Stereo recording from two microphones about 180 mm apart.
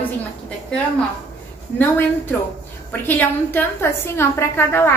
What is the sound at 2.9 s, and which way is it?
A woman's voice, 10° left (ahead or behind).